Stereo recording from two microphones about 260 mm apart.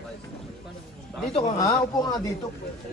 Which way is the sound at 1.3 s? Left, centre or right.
Centre.